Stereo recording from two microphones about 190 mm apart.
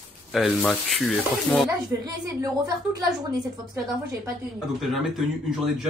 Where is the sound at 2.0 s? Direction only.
20° right (ahead or behind).